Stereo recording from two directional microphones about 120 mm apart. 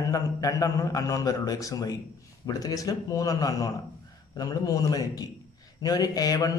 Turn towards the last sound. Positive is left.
turn(degrees=30)  # may be behind; listen again after turning